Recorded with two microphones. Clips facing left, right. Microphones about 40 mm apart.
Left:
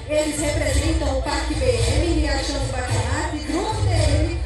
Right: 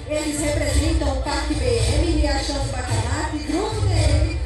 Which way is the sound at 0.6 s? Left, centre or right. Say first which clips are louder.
Even; left.